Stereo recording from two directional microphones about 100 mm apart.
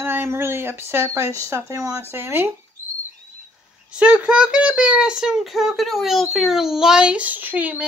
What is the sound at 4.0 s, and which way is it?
Speech, 10° right (ahead or behind).